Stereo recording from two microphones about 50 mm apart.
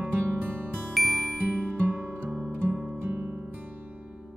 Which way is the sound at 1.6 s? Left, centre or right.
Right.